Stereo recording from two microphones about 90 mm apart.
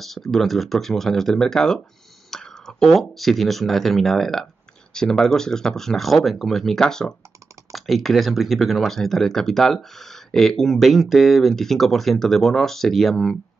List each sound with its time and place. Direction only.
0.0 s speech: centre (ahead or behind)